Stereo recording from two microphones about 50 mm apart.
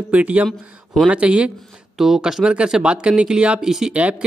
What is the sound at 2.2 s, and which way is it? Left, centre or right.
Speech, centre.